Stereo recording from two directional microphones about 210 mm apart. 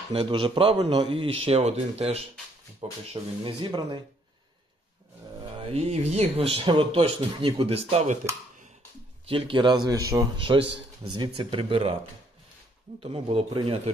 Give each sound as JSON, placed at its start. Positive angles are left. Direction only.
{"t": 0.1, "sound": "a man's voice", "side_deg": -25}
{"t": 5.6, "sound": "a man's voice", "side_deg": -30}
{"t": 9.3, "sound": "a man's voice", "side_deg": -25}
{"t": 13.0, "sound": "a man's voice", "side_deg": -25}